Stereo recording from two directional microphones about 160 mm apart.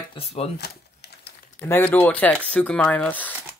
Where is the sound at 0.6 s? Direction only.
90° left.